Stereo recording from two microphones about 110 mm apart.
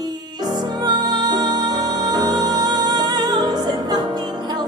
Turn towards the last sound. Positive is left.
turn(degrees=-40)  # may be behind; listen again after turning